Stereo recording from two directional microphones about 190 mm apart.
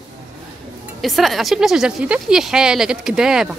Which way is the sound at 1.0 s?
Centre (ahead or behind).